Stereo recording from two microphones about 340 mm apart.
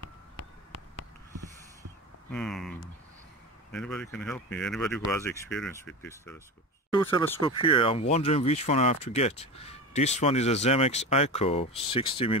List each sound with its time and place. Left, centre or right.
2.3 s speech: centre